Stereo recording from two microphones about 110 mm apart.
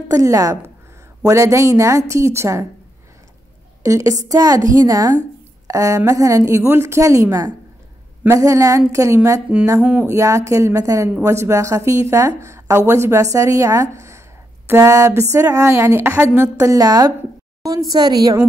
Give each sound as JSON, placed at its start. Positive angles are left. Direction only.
{"t": 0.1, "sound": "a woman's voice", "side_deg": -30}
{"t": 3.8, "sound": "a woman's voice", "side_deg": -30}
{"t": 9.8, "sound": "music", "side_deg": -10}
{"t": 10.0, "sound": "a woman's voice", "side_deg": -30}